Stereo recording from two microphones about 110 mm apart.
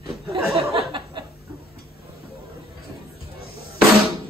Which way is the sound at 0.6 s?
50° right (ahead or behind).